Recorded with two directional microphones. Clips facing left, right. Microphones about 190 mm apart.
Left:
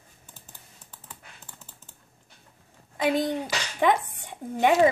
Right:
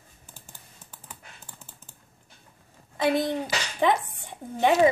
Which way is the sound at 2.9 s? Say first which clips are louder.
Right 1 dB; 20° left (ahead or behind).